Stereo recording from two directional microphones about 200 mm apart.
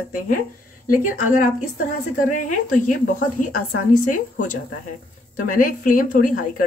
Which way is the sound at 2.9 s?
40° left (ahead or behind).